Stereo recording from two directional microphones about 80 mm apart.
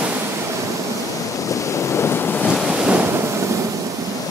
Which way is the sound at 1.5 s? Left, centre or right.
Left.